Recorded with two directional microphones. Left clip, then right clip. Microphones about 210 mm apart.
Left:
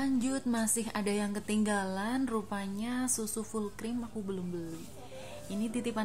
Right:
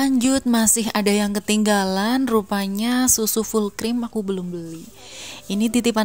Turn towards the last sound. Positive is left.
turn(degrees=-50)  # may be behind; listen again after turning